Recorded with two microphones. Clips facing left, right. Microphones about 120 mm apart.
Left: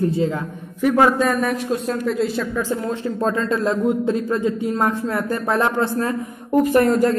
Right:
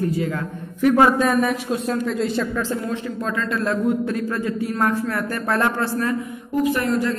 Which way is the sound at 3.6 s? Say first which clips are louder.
Even; 25° left (ahead or behind).